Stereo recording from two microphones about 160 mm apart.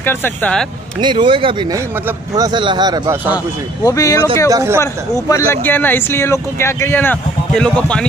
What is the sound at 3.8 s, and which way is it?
Speech, 20° left (ahead or behind).